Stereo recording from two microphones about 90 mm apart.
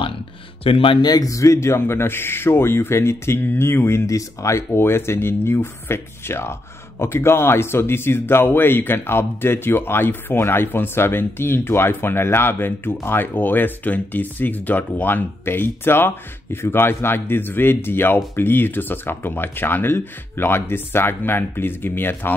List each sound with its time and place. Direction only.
0.7 s speech: 90° left
1.0 s speech: 45° left (ahead or behind); by 22.3 s 25° left (ahead or behind)